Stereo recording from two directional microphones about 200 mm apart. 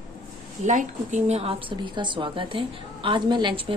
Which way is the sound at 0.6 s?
40° right (ahead or behind).